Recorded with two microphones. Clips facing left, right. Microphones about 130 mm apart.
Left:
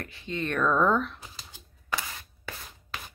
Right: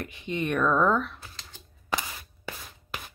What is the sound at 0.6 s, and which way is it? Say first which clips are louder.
Speech: even; 5° right (ahead or behind).